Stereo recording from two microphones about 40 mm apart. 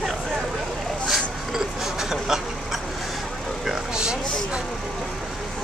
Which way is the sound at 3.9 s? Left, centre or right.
Centre.